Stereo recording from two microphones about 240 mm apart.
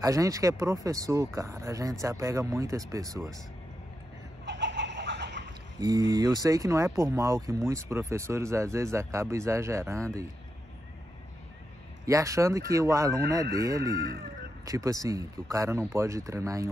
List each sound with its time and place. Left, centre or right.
0.0 s speech: centre
4.5 s fowl: right
5.8 s speech: centre
12.1 s speech: centre